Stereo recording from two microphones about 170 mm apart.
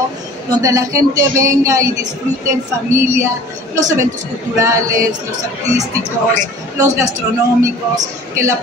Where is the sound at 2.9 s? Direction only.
15° right (ahead or behind).